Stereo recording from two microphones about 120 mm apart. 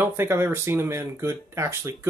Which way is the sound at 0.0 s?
20° right (ahead or behind).